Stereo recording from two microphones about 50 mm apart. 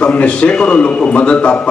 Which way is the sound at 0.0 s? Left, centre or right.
Left.